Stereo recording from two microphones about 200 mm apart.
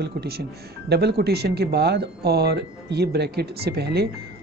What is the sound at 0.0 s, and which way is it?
Speech, 55° right (ahead or behind).